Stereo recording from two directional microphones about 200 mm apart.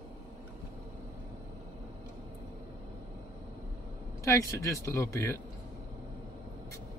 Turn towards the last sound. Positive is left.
turn(degrees=15)  # may be behind; listen again after turning